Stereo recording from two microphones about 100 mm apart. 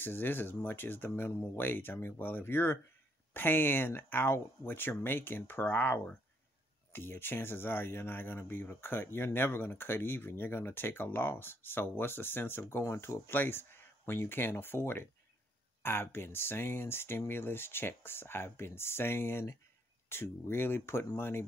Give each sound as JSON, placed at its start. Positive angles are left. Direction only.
{"t": 0.0, "sound": "speech", "side_deg": 20}